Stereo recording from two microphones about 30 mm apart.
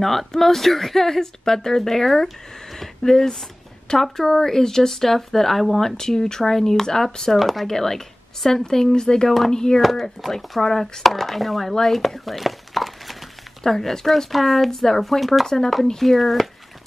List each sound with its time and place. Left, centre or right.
0.0 s speech: centre
3.0 s speech: centre
7.3 s speech: centre
7.6 s speech: centre
9.8 s speech: centre
15.0 s speech: centre
15.4 s speech: centre
16.0 s speech: centre